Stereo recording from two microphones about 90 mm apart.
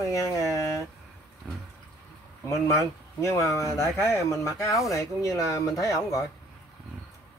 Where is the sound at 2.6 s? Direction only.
35° left (ahead or behind).